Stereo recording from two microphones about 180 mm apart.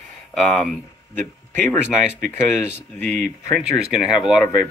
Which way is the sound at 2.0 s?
45° right (ahead or behind).